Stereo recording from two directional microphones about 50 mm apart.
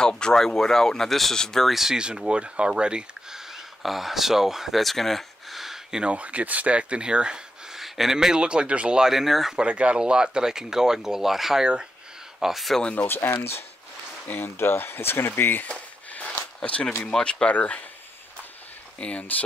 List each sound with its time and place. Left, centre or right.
0.2 s speech: centre
1.7 s speech: centre
2.0 s speech: centre
6.1 s speech: right
7.8 s speech: centre
9.1 s speech: centre
9.6 s speech: right; by 11.6 s centre
11.6 s speech: centre
12.4 s speech: centre
12.9 s speech: left
15.7 s a sound: left
16.5 s speech: left
18.9 s speech: left